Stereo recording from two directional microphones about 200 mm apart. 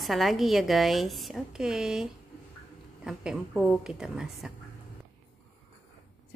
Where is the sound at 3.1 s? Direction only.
Centre (ahead or behind).